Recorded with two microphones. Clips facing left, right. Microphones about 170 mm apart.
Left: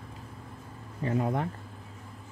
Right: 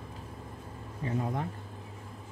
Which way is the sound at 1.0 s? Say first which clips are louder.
Left 4 dB; 65° left (ahead or behind).